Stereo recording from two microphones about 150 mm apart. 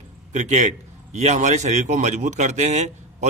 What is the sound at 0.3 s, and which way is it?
A man's voice, 50° right (ahead or behind).